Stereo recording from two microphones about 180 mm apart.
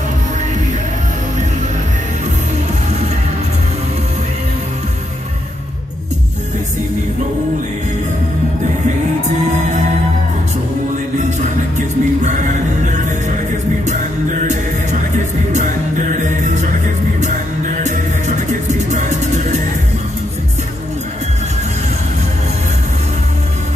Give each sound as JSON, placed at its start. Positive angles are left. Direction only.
{"t": 11.2, "sound": "music", "side_deg": -40}
{"t": 16.1, "sound": "music", "side_deg": -45}
{"t": 17.8, "sound": "music", "side_deg": -40}